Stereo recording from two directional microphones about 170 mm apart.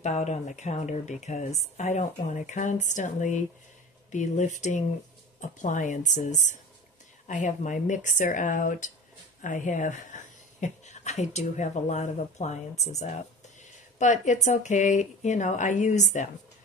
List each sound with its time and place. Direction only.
0.0 s speech: 40° left (ahead or behind)